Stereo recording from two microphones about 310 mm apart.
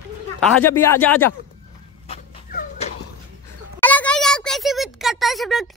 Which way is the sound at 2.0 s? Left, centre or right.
Left.